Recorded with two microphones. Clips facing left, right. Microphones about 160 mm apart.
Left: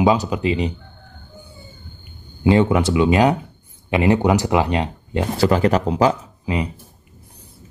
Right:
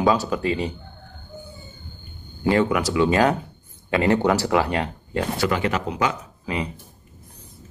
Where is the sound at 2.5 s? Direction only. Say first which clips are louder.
Left 4 dB; 20° left (ahead or behind).